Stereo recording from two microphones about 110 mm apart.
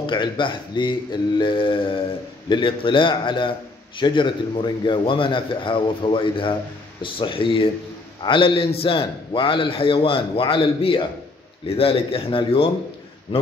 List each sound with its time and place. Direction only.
0.0 s a man's voice: 45° left (ahead or behind)